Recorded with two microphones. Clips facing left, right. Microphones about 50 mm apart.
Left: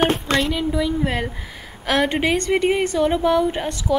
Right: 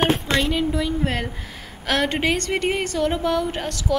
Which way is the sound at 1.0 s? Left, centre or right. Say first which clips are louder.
Left 2 dB; centre.